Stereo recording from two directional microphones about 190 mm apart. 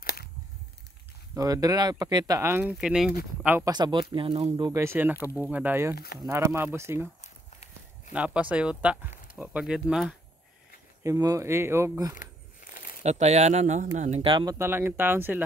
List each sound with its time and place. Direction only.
0.0 s a sound: 55° left (ahead or behind)
1.3 s speech: 20° right (ahead or behind)
2.7 s speech: centre (ahead or behind)
3.7 s speech: 20° right (ahead or behind)
4.6 s speech: 15° right (ahead or behind)
8.1 s speech: 5° right (ahead or behind)
11.1 s speech: 15° right (ahead or behind)
12.7 s a sound: 50° left (ahead or behind)
13.0 s speech: 35° right (ahead or behind); by 15.4 s 10° right (ahead or behind)